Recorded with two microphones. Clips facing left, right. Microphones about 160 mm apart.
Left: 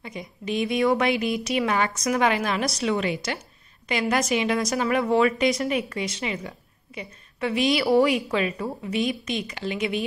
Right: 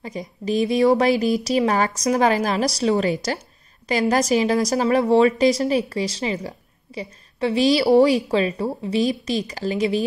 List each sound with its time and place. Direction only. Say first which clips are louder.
0.0 s a woman's voice: right 5 dB; 35° right (ahead or behind)